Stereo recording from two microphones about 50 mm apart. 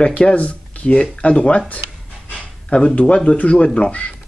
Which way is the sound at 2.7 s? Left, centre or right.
Left.